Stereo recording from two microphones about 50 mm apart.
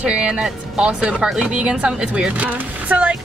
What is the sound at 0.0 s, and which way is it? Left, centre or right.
Speech, right.